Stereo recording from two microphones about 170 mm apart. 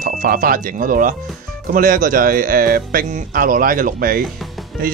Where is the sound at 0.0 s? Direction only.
55° right (ahead or behind).